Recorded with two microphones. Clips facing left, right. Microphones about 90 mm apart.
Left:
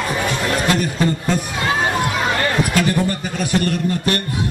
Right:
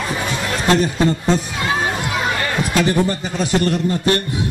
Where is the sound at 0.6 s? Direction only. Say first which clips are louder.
Right 6 dB; 25° right (ahead or behind).